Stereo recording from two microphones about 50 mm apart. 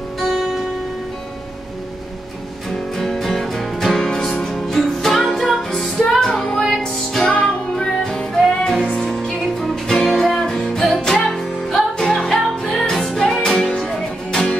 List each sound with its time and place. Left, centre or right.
0.2 s music: centre
3.0 s music: centre
6.8 s music: centre
8.4 s music: centre
8.8 s music: left
9.4 s music: centre
13.4 s music: centre